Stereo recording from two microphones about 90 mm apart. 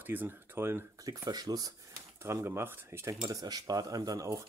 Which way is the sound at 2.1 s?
25° right (ahead or behind).